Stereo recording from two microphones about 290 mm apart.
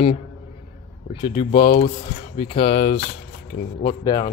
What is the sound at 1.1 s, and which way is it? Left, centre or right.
A man's voice, centre.